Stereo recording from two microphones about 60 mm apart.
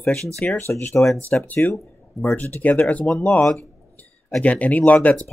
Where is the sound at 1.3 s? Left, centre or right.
Left.